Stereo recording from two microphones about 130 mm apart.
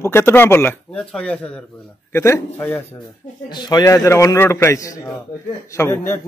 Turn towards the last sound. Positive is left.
turn(degrees=20)  # may be behind; listen again after turning